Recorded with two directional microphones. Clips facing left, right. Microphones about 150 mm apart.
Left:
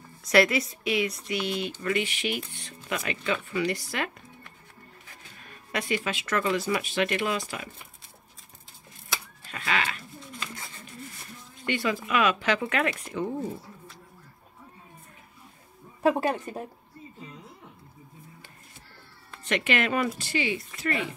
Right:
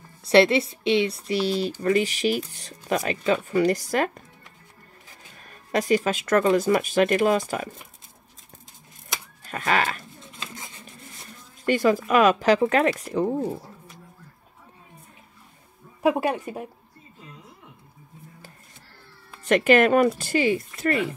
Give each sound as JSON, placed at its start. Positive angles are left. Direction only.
{"t": 0.2, "sound": "speech", "side_deg": -30}
{"t": 5.4, "sound": "speech", "side_deg": -40}
{"t": 9.4, "sound": "sheep", "side_deg": -45}
{"t": 10.2, "sound": "a sound", "side_deg": -20}
{"t": 11.6, "sound": "speech", "side_deg": -45}
{"t": 16.0, "sound": "speech", "side_deg": -10}
{"t": 19.4, "sound": "speech", "side_deg": -45}